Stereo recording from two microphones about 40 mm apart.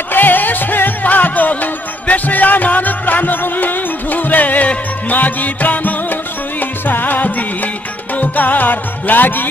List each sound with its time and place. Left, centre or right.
0.1 s music: left